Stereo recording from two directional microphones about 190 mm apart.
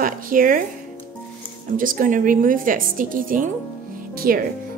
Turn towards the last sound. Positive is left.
turn(degrees=-50)  # may be behind; listen again after turning